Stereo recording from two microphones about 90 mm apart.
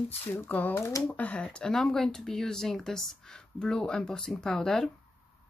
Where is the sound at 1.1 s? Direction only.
15° left (ahead or behind).